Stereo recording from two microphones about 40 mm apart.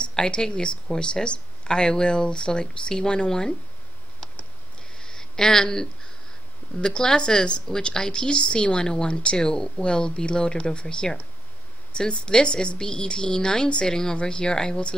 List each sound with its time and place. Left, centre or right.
0.1 s a woman's voice: centre
4.9 s a sound: centre
7.0 s a woman's voice: centre